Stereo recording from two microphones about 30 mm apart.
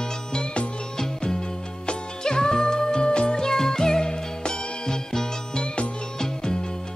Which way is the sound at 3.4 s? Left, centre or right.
Centre.